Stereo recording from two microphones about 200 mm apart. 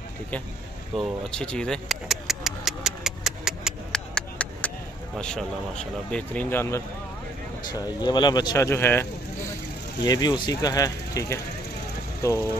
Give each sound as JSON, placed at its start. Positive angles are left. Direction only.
{"t": 0.9, "sound": "speech", "side_deg": 5}
{"t": 10.0, "sound": "speech", "side_deg": 20}